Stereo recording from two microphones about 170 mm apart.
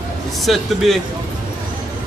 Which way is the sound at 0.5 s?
Centre (ahead or behind).